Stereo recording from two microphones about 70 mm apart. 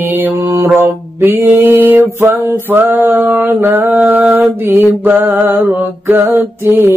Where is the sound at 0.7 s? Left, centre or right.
Right.